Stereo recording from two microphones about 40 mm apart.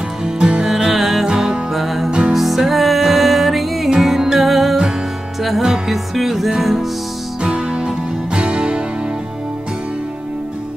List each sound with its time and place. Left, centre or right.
0.2 s music: centre
1.2 s music: centre
1.7 s music: centre
2.0 s music: right
2.3 s music: centre
5.6 s music: centre
7.4 s music: right